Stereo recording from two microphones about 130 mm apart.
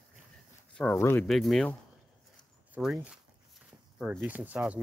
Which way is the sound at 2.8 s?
15° right (ahead or behind).